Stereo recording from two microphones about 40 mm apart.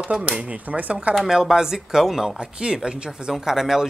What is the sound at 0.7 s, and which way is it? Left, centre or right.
Speech, right.